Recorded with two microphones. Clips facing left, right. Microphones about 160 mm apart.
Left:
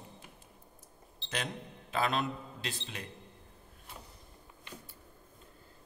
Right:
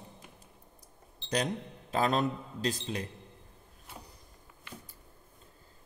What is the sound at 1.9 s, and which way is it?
A man's voice, 40° right (ahead or behind).